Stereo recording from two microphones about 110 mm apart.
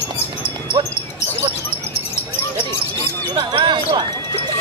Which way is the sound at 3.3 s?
40° right (ahead or behind).